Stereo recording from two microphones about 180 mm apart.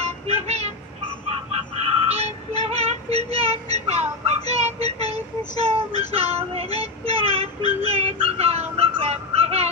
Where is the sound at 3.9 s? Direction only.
35° right (ahead or behind).